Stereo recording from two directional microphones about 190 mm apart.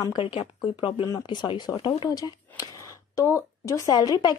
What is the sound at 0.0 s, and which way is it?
A woman's voice, 25° left (ahead or behind).